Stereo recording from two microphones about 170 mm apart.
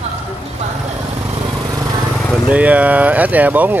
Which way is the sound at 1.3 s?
20° right (ahead or behind).